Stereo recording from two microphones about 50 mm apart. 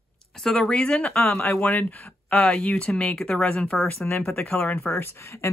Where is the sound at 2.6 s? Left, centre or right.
Centre.